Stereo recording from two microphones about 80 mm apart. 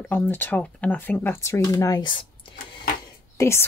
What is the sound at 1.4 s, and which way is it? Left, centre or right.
Speech, left.